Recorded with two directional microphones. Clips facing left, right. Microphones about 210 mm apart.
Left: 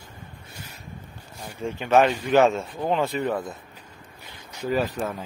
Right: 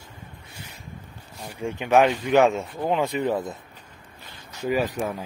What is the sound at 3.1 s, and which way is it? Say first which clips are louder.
Speech: right 2 dB; 20° right (ahead or behind).